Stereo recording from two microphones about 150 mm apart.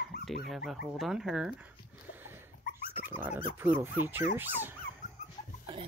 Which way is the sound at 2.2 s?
15° right (ahead or behind).